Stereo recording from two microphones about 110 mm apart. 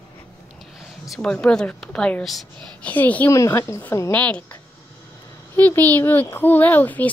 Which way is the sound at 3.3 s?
25° left (ahead or behind).